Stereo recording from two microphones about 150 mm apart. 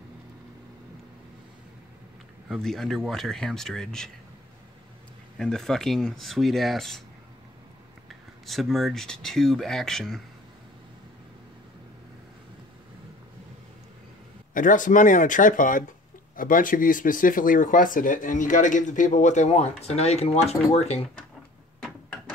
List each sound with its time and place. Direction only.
2.4 s speech: centre (ahead or behind)
5.4 s speech: 5° left (ahead or behind)
8.1 s speech: centre (ahead or behind)
14.5 s speech: 60° left (ahead or behind); by 21.1 s 45° left (ahead or behind)